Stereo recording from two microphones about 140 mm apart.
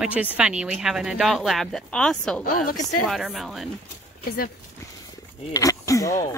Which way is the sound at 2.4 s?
90° left.